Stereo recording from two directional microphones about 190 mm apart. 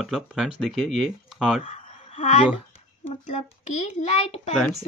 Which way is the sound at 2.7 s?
30° left (ahead or behind).